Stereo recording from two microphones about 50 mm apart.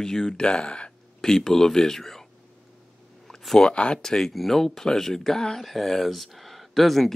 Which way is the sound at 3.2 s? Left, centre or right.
Centre.